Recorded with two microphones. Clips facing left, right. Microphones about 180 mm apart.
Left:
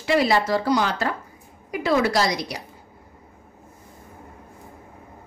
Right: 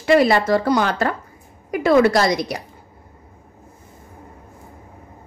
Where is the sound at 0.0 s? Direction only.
55° right (ahead or behind).